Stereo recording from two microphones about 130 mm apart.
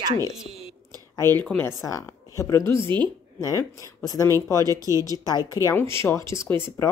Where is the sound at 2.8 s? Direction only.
40° right (ahead or behind).